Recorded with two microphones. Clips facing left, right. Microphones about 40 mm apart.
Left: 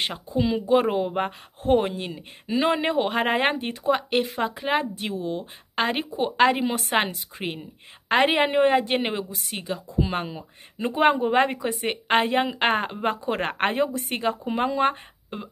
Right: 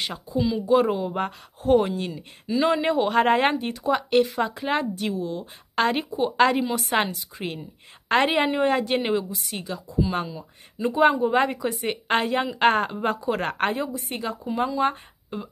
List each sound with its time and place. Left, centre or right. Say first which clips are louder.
0.0 s a woman's voice: left 1 dB; left
3.2 s speech: right 5 dB; centre
3.5 s a woman's voice: even; left
4.9 s a woman's voice: right 1 dB; left
6.3 s a woman's voice: even; left
6.7 s a woman's voice: even; left
8.1 s a woman's voice: left 1 dB; centre
13.7 s a woman's voice: left 3 dB; left
15.2 s speech: right 2 dB; left